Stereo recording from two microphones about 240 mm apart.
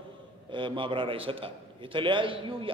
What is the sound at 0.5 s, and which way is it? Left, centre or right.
A man's voice, centre.